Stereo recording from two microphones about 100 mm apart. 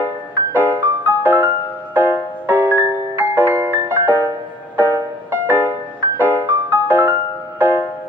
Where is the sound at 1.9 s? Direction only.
20° right (ahead or behind).